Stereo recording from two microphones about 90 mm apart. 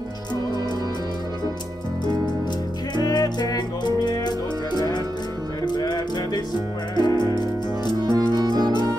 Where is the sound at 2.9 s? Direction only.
50° left (ahead or behind).